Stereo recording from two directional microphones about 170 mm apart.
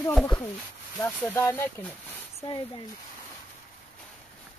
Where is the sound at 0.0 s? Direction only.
10° left (ahead or behind).